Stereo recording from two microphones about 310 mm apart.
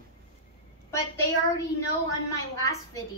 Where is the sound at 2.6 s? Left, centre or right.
Centre.